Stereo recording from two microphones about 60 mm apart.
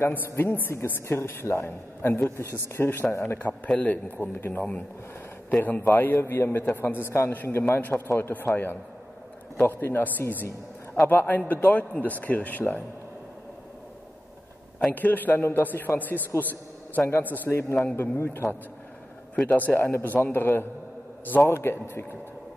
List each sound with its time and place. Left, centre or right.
0.5 s a man's voice: left
9.7 s a man's voice: left
14.9 s a man's voice: left
17.5 s a man's voice: left
19.4 s a man's voice: left